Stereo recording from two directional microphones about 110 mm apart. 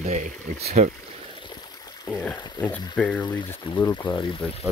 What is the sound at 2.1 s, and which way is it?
Speech, 15° left (ahead or behind).